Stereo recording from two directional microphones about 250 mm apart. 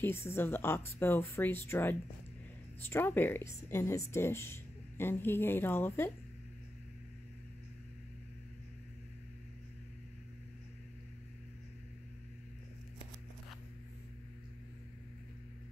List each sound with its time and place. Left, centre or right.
0.0 s speech: centre